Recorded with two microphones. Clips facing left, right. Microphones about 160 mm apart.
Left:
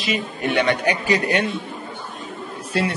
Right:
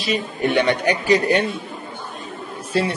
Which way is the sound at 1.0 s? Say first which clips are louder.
Right 5 dB; 35° right (ahead or behind).